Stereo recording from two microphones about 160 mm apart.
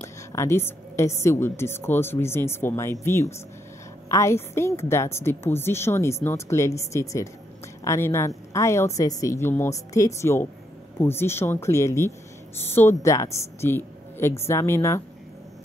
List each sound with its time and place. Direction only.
0.0 s a woman's voice: 20° left (ahead or behind)